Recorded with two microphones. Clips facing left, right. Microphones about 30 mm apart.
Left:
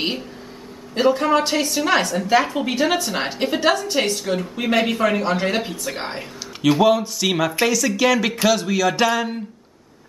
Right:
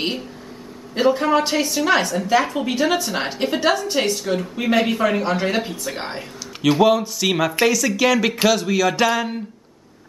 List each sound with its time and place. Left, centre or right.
0.9 s a woman's voice: centre